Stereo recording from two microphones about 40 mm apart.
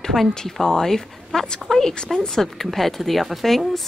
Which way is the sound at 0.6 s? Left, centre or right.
Centre.